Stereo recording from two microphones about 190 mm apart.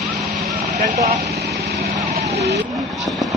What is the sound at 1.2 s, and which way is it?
Vehicle, 55° right (ahead or behind).